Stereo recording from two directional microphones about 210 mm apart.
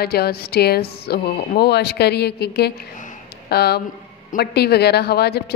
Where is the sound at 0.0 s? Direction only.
50° left (ahead or behind).